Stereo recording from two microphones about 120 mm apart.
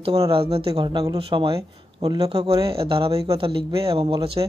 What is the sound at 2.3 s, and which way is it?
Speech, 55° right (ahead or behind).